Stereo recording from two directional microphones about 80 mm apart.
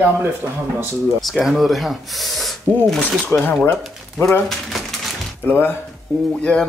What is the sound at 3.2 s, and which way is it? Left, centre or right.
Speech, left.